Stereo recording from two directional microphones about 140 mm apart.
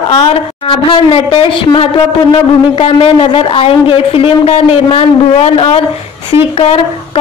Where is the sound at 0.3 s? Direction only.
40° left (ahead or behind).